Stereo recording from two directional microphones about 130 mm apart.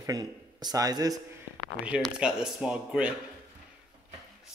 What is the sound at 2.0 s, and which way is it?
Speech, 5° right (ahead or behind).